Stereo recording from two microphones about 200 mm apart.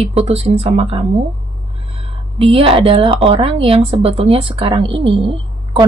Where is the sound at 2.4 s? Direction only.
30° right (ahead or behind).